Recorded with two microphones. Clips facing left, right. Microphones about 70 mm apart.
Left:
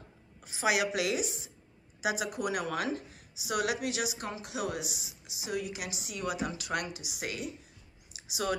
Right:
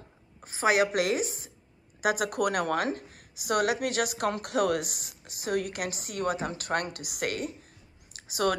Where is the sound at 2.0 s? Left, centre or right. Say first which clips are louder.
Right 5 dB; right.